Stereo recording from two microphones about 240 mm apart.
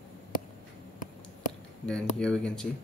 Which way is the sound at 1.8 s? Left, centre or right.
Centre.